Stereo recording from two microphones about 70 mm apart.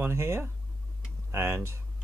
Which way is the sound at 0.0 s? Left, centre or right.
Right.